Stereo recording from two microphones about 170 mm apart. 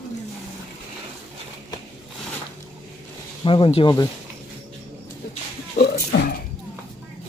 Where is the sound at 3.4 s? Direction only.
30° left (ahead or behind).